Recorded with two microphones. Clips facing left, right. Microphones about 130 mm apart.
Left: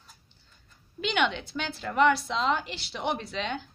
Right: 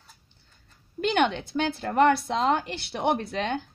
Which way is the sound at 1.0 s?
50° right (ahead or behind).